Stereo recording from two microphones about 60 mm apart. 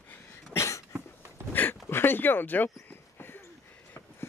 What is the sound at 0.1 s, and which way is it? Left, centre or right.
Cough, left.